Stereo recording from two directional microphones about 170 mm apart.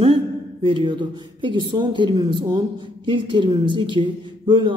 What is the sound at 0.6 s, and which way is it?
Speech, 30° right (ahead or behind).